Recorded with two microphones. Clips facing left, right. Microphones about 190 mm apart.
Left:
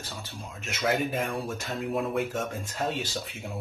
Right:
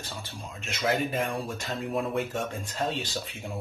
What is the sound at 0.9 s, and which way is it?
Speech, 5° left (ahead or behind).